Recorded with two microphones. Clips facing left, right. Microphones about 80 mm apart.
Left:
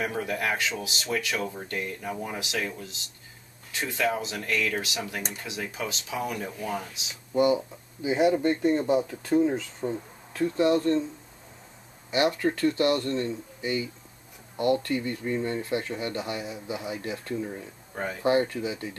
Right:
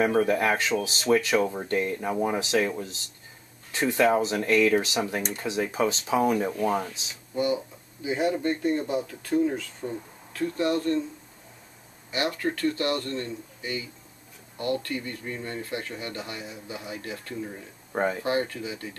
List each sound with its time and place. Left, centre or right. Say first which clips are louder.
0.2 s speech: right 5 dB; right
3.7 s speech: right 6 dB; right
7.3 s speech: left 4 dB; left
12.1 s speech: left 4 dB; left